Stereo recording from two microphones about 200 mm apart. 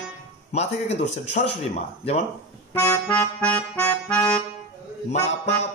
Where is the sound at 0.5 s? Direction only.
35° left (ahead or behind).